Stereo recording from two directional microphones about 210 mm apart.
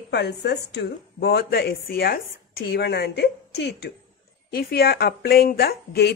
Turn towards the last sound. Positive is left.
turn(degrees=50)  # may be behind; listen again after turning